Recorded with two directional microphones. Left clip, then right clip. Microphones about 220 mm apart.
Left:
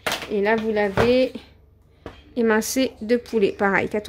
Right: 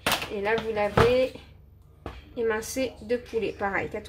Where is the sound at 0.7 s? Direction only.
50° left (ahead or behind).